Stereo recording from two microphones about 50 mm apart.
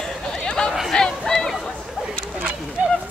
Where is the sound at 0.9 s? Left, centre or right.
Centre.